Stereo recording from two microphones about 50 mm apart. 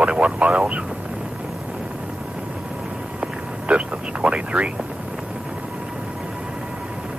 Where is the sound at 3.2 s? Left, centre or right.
Right.